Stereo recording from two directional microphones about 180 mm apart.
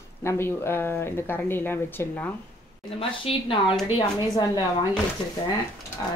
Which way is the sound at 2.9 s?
30° left (ahead or behind).